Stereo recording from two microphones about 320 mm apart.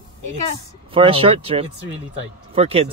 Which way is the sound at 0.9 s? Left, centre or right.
Centre.